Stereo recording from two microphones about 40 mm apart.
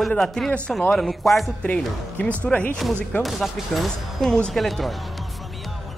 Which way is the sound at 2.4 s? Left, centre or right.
Left.